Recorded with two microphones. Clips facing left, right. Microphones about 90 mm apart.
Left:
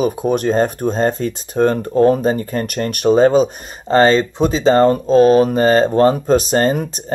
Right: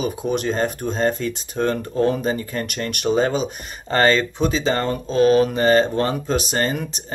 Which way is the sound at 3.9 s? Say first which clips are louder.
Left 5 dB; 30° left (ahead or behind).